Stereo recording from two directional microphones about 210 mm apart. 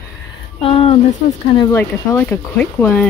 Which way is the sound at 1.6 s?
10° left (ahead or behind).